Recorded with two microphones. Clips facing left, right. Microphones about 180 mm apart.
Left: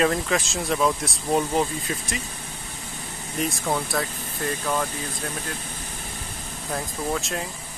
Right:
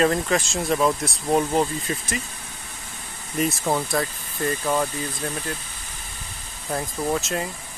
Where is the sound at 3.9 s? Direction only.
Centre (ahead or behind).